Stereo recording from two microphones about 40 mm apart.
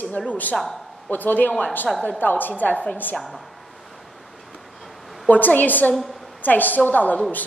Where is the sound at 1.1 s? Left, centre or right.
Left.